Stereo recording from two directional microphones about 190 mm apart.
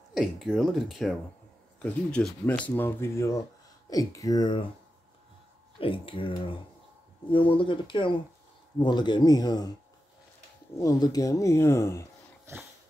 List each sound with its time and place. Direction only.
0.1 s speech: 5° right (ahead or behind); by 4.6 s 20° left (ahead or behind)
5.8 s speech: 25° left (ahead or behind)
10.8 s speech: 20° left (ahead or behind)